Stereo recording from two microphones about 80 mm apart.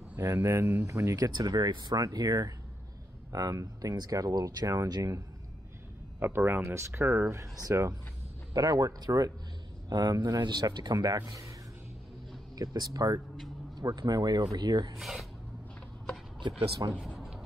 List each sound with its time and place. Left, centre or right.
0.2 s speech: right
1.3 s speech: right
6.1 s speech: right
8.5 s speech: right
12.5 s speech: right
15.0 s speech: centre
16.3 s speech: right
17.0 s a sound: centre